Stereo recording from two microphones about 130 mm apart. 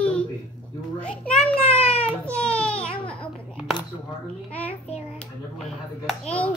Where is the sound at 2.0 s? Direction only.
10° left (ahead or behind).